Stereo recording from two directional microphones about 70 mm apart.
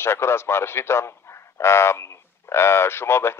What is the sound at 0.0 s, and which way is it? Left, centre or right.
A man's voice, left.